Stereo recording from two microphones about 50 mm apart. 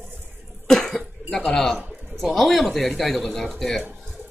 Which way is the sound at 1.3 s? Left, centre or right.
Centre.